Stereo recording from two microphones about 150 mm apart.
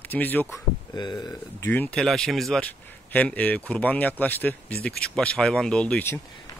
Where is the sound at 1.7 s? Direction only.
10° left (ahead or behind).